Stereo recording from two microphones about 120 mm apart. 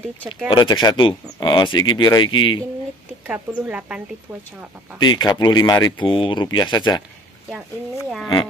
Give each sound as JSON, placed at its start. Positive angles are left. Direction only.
{"t": 0.5, "sound": "speech", "side_deg": 40}
{"t": 3.3, "sound": "speech", "side_deg": -15}
{"t": 4.3, "sound": "speech", "side_deg": -35}
{"t": 4.9, "sound": "speech", "side_deg": 35}